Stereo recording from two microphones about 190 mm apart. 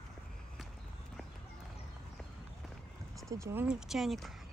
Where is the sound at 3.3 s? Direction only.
15° right (ahead or behind).